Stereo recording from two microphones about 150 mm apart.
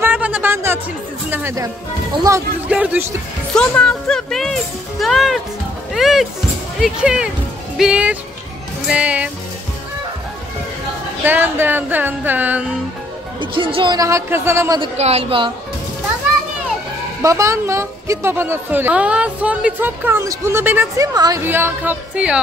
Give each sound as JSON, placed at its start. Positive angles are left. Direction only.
{"t": 0.0, "sound": "music", "side_deg": -10}
{"t": 1.3, "sound": "speech", "side_deg": -20}
{"t": 2.7, "sound": "a woman's voice", "side_deg": -10}
{"t": 3.5, "sound": "a woman's voice", "side_deg": 5}
{"t": 11.2, "sound": "a woman's voice", "side_deg": -15}
{"t": 13.4, "sound": "speech", "side_deg": -35}
{"t": 13.9, "sound": "speech", "side_deg": -20}
{"t": 14.8, "sound": "speech", "side_deg": -40}
{"t": 17.2, "sound": "a woman's voice", "side_deg": -20}
{"t": 21.5, "sound": "a woman's voice", "side_deg": -15}